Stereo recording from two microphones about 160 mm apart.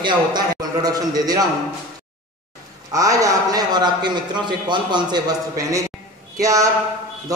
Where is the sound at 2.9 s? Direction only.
20° right (ahead or behind).